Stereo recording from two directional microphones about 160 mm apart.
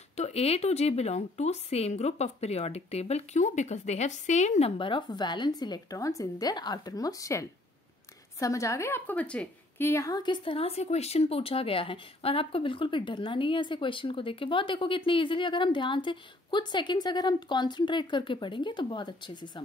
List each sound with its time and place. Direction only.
0.1 s a woman's voice: 40° left (ahead or behind)